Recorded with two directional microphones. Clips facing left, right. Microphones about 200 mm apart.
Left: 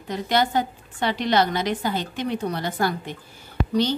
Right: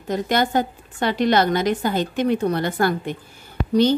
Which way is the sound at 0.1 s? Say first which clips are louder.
Right 2 dB; 50° right (ahead or behind).